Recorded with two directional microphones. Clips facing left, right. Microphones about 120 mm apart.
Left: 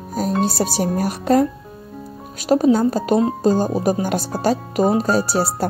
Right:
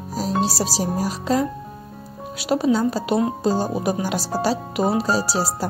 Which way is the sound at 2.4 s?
45° left (ahead or behind).